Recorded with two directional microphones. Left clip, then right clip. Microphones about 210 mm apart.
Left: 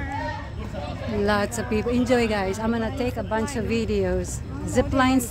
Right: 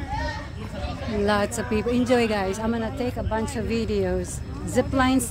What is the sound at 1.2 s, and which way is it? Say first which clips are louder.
A woman's voice: even; 10° right (ahead or behind).